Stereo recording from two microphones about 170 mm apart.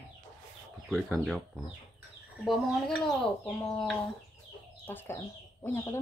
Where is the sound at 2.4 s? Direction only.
Centre (ahead or behind).